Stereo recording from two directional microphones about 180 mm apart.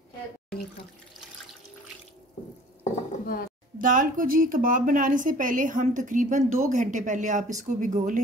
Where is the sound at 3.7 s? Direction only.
50° right (ahead or behind).